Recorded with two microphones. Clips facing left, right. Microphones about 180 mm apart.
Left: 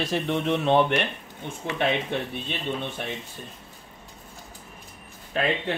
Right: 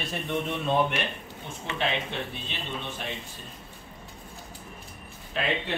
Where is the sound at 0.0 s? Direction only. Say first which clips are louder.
Left 5 dB; 85° left.